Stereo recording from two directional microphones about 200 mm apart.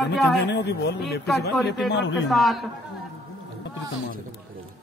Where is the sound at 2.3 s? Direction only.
Centre (ahead or behind).